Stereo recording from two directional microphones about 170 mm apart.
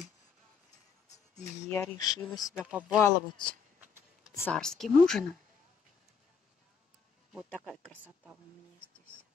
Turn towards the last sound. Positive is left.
turn(degrees=5)  # may be behind; listen again after turning